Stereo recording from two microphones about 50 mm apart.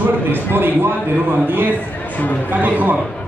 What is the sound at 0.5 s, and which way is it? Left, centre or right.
A man's voice, right.